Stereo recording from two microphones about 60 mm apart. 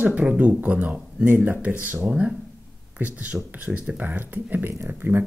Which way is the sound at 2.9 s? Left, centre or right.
Right.